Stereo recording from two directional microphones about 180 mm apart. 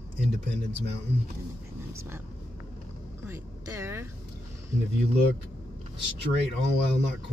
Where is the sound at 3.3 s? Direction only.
15° right (ahead or behind).